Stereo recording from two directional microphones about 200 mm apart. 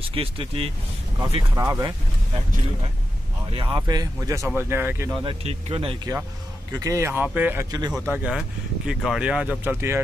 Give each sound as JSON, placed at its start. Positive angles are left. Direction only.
{"t": 0.1, "sound": "speech", "side_deg": -25}
{"t": 1.5, "sound": "speech", "side_deg": -15}
{"t": 3.5, "sound": "speech", "side_deg": -25}
{"t": 5.2, "sound": "speech", "side_deg": -30}
{"t": 6.7, "sound": "speech", "side_deg": -15}